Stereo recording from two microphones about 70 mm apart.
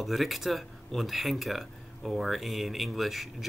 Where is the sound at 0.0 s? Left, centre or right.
Centre.